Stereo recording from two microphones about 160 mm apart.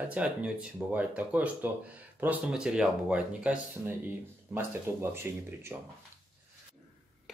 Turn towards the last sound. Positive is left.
turn(degrees=-15)  # may be behind; listen again after turning